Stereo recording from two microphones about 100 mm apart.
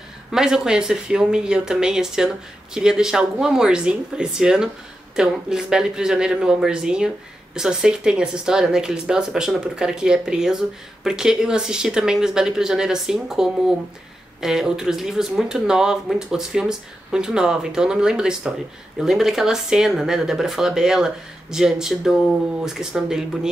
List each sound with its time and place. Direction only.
0.3 s speech: 5° right (ahead or behind)